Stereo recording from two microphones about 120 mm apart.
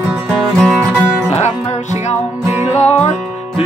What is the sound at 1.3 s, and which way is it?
Speech, 70° left (ahead or behind).